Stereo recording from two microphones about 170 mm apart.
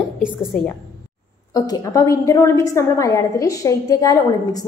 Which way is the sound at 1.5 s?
20° left (ahead or behind).